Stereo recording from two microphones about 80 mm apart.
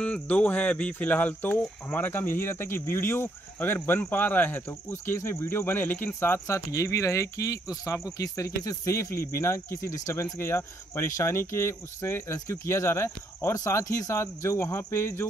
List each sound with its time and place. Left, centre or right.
0.0 s speech: centre; by 15.2 s left